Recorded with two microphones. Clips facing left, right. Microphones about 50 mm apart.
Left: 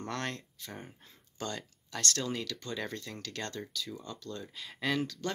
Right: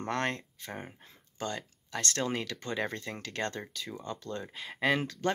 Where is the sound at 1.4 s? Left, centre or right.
Centre.